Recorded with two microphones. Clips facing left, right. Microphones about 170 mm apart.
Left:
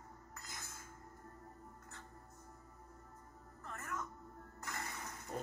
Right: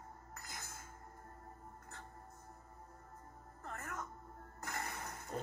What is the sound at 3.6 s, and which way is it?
Music, 55° right (ahead or behind).